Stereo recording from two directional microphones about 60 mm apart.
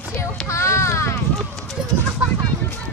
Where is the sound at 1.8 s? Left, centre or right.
Centre.